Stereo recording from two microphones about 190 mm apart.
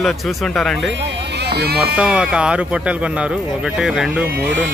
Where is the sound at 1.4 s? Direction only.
60° right (ahead or behind).